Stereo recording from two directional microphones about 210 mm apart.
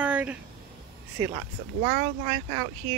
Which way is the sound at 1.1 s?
20° right (ahead or behind).